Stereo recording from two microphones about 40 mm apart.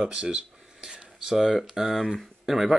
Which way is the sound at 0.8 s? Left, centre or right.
Right.